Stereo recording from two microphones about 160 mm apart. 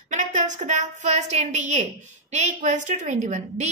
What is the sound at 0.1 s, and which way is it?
A woman's voice, 50° right (ahead or behind).